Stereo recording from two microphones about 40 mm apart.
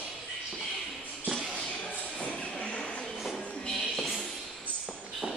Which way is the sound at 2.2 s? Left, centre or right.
Left.